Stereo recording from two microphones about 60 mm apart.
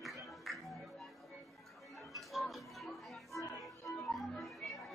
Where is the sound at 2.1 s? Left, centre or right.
Centre.